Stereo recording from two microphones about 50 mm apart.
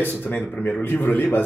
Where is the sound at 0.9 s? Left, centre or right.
Left.